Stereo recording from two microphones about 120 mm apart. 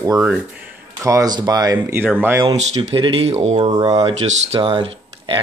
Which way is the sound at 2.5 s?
70° right (ahead or behind).